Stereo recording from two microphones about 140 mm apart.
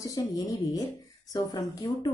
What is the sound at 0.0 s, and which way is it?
Speech, 25° left (ahead or behind).